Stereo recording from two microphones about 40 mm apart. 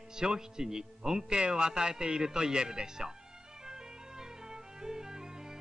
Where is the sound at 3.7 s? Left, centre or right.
Centre.